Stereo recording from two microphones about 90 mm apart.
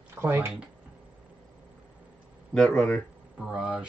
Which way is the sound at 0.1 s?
25° right (ahead or behind).